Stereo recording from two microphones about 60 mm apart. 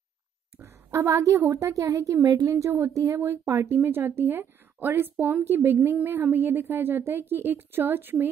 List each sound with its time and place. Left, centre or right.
0.8 s a sound: right
1.1 s a woman's voice: right
3.4 s a woman's voice: right
5.4 s a woman's voice: right